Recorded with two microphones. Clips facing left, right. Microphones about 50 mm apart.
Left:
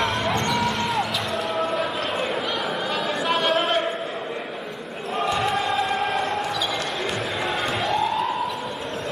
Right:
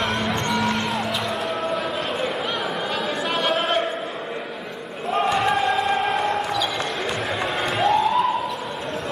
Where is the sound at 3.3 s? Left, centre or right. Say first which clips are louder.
Left 1 dB; centre.